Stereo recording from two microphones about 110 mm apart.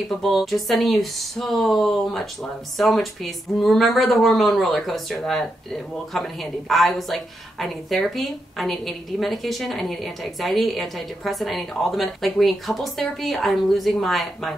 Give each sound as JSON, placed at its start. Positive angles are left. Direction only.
{"t": 0.2, "sound": "speech", "side_deg": 0}